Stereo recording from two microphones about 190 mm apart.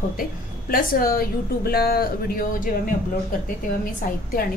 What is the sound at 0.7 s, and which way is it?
A woman's voice, 50° left (ahead or behind).